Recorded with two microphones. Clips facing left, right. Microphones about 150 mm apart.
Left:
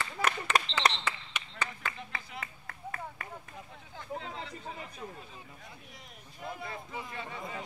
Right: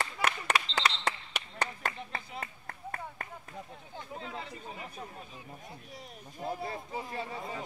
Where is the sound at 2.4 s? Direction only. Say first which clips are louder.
Right 2 dB; 45° right (ahead or behind).